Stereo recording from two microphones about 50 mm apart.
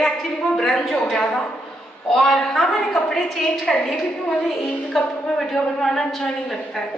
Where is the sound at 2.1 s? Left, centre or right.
Centre.